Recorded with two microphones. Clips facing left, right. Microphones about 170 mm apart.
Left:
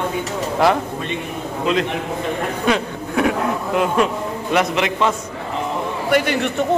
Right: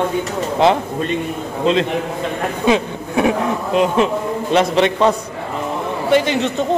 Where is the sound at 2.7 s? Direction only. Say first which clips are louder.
Right 4 dB; 20° right (ahead or behind).